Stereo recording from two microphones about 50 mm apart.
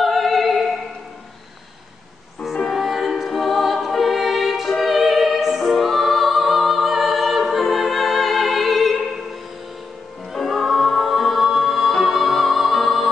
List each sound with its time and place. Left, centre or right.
0.0 s opera: centre
2.4 s music: centre
10.3 s music: centre